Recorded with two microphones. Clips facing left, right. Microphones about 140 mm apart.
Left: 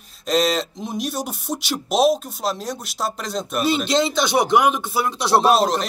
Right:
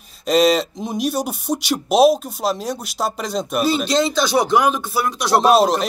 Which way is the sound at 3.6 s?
25° left (ahead or behind).